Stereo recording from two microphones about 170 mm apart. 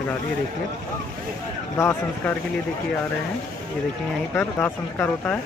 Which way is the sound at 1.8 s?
15° left (ahead or behind).